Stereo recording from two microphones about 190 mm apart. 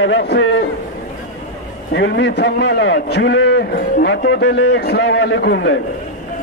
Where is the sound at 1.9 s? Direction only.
70° left (ahead or behind).